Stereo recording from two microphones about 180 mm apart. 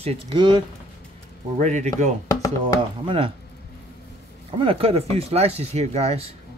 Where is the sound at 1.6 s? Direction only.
40° right (ahead or behind).